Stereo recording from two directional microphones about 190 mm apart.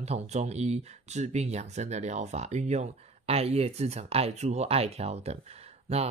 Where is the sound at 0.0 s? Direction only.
35° right (ahead or behind).